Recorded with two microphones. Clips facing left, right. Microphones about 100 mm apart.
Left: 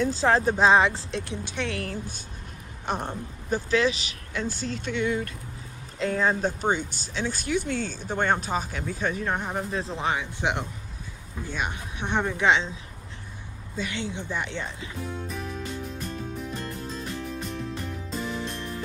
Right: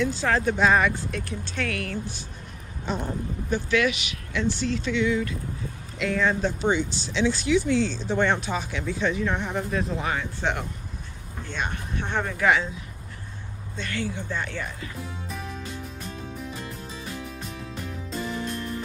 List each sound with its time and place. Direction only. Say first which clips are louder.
0.2 s speech: left 3 dB; 30° left (ahead or behind); by 1.7 s 15° left (ahead or behind)
1.7 s speech: right 1 dB; 35° left (ahead or behind)
3.4 s speech: even; 35° left (ahead or behind)
10.1 s speech: even; 15° left (ahead or behind)
13.9 s speech: right 4 dB; 20° left (ahead or behind)
15.0 s music: left 2 dB; centre (ahead or behind)